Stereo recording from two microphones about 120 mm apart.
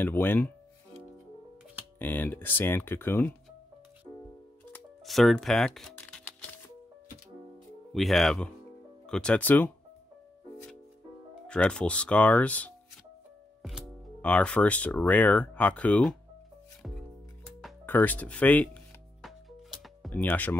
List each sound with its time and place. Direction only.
0.0 s speech: 15° left (ahead or behind)
2.0 s speech: 15° left (ahead or behind)
5.0 s speech: centre (ahead or behind)
7.9 s speech: centre (ahead or behind)
11.4 s speech: 10° left (ahead or behind)
13.6 s music: centre (ahead or behind)
14.2 s speech: 10° left (ahead or behind)
17.8 s speech: 15° left (ahead or behind)
19.8 s music: centre (ahead or behind)
20.2 s speech: 15° left (ahead or behind)